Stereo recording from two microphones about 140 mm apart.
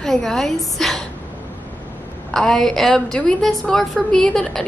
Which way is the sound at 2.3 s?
5° left (ahead or behind).